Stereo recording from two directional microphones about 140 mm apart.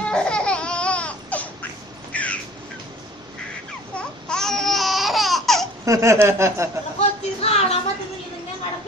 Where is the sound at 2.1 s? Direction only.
10° left (ahead or behind).